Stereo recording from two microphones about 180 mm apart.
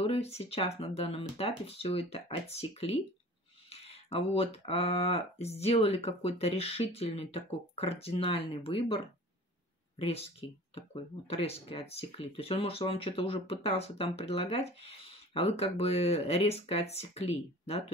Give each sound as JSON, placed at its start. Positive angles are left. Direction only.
{"t": 0.0, "sound": "speech", "side_deg": 35}